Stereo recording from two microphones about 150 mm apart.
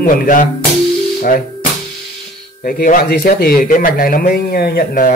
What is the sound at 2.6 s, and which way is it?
Speech, 70° left (ahead or behind).